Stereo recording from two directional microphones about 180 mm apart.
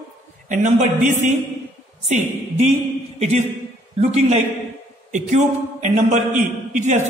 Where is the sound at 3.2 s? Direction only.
40° right (ahead or behind).